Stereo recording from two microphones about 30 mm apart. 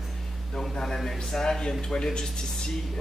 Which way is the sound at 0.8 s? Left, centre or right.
Centre.